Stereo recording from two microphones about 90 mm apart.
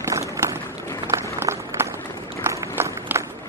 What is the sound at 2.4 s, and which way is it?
Run, 25° right (ahead or behind).